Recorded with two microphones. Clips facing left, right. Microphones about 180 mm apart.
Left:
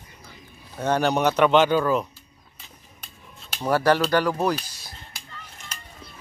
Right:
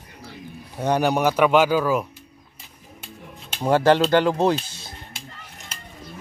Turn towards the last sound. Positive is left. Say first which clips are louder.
# right 1 dB
turn(degrees=-25)  # may be behind; listen again after turning